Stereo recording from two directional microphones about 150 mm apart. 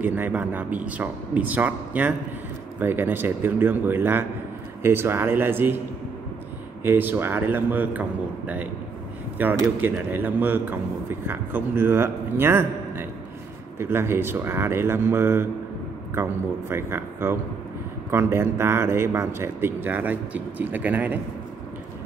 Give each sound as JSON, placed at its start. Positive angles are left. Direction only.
{"t": 0.0, "sound": "a man's voice", "side_deg": -10}
{"t": 6.8, "sound": "a man's voice", "side_deg": -15}